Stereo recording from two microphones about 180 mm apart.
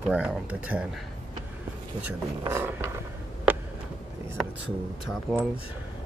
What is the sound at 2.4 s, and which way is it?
Speech, 15° right (ahead or behind).